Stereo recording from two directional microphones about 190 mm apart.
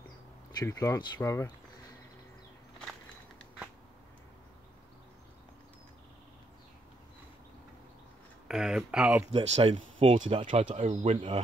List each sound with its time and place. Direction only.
0.6 s speech: 15° left (ahead or behind)
8.5 s speech: 5° right (ahead or behind)
9.3 s speech: 30° right (ahead or behind)
10.1 s speech: 40° right (ahead or behind)
10.5 s speech: 30° right (ahead or behind)